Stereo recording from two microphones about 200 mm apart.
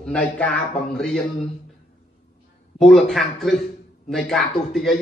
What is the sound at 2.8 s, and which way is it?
Speech, centre (ahead or behind).